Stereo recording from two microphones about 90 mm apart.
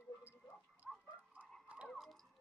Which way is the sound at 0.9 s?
10° left (ahead or behind).